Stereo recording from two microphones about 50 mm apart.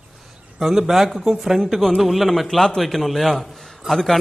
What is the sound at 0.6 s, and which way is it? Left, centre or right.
A man's voice, centre.